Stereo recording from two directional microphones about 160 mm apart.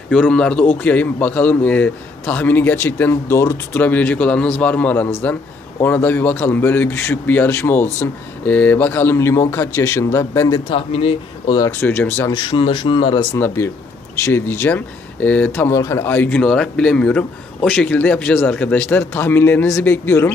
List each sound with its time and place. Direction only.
0.1 s a man's voice: 5° left (ahead or behind)
10.7 s speech: 35° left (ahead or behind)
11.6 s a man's voice: 15° left (ahead or behind)
12.3 s speech: 30° left (ahead or behind)
14.2 s a man's voice: 15° left (ahead or behind)